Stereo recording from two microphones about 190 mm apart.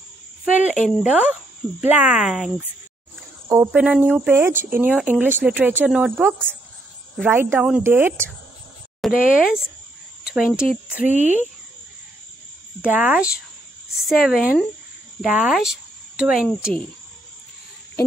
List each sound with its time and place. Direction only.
0.7 s speech: centre (ahead or behind)
3.4 s speech: 15° right (ahead or behind)
11.1 s speech: 40° left (ahead or behind)
12.8 s speech: 10° right (ahead or behind)